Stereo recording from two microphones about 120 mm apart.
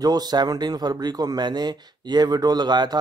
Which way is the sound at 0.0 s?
35° right (ahead or behind).